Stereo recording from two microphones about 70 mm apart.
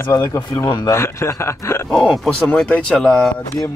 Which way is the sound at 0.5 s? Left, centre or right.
Left.